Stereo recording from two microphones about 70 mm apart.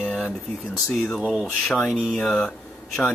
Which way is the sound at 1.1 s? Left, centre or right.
Centre.